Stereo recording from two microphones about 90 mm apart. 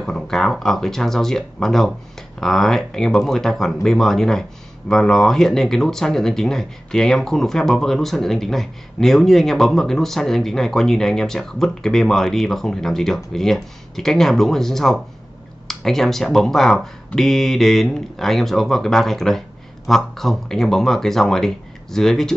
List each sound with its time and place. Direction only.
0.0 s speech: 5° left (ahead or behind)